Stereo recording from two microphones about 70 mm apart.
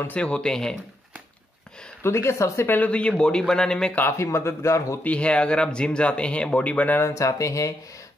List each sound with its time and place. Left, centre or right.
0.1 s speech: centre
2.0 s speech: left
2.7 s speech: centre
4.2 s speech: left
5.0 s speech: centre
7.0 s speech: left